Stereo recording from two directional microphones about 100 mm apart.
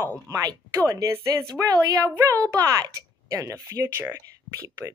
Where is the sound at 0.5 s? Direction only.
40° right (ahead or behind).